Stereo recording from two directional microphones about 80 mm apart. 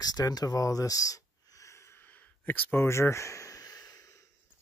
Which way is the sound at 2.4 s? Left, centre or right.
Left.